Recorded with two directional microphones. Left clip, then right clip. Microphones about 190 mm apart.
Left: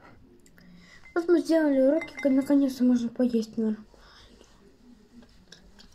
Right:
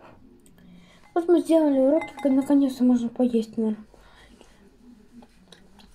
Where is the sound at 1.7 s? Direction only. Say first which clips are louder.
Right 2 dB; 15° left (ahead or behind).